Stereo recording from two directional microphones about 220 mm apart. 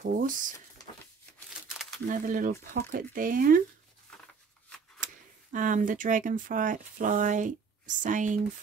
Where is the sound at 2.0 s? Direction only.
35° right (ahead or behind).